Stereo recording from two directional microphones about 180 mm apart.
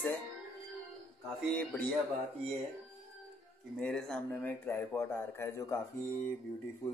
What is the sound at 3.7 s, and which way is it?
Speech, 5° left (ahead or behind).